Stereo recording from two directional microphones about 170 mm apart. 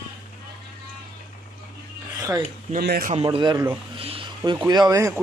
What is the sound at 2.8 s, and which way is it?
Speech, 60° right (ahead or behind).